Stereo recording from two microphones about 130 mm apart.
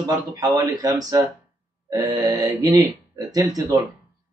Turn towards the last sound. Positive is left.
turn(degrees=-30)  # may be behind; listen again after turning